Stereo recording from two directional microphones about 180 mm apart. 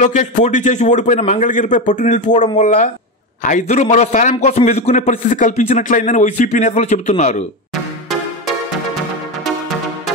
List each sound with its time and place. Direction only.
0.0 s a man's voice: 45° left (ahead or behind)